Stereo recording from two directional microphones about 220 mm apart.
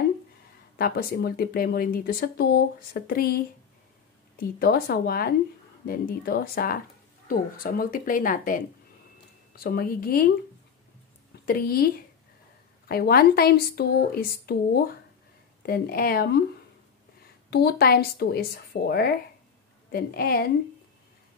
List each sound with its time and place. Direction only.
0.7 s speech: 45° left (ahead or behind)
4.4 s speech: 45° left (ahead or behind)
11.4 s speech: 45° left (ahead or behind)
17.5 s speech: 45° left (ahead or behind)